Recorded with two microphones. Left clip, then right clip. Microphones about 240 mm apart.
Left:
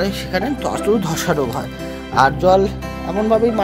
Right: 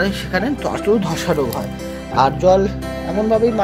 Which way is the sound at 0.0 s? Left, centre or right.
Centre.